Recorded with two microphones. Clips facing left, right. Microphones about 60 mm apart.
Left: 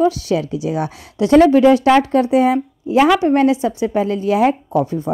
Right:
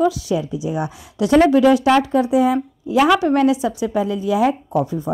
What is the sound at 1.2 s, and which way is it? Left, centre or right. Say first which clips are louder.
Speech: left 3 dB; left.